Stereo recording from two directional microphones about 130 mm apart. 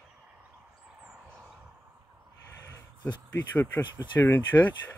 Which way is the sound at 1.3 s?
5° left (ahead or behind).